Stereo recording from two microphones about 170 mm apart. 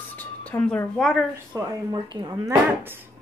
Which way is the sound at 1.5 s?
20° right (ahead or behind).